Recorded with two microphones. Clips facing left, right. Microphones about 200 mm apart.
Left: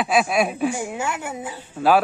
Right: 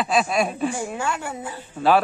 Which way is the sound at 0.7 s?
15° left (ahead or behind).